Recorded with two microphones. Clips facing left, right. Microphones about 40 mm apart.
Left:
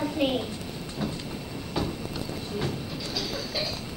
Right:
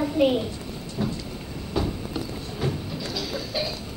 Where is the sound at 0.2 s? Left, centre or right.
Centre.